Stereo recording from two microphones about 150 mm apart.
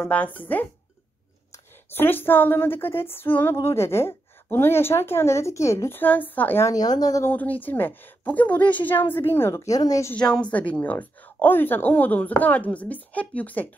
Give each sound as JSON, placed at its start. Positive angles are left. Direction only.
{"t": 0.0, "sound": "a woman's voice", "side_deg": 10}
{"t": 10.1, "sound": "a woman's voice", "side_deg": 5}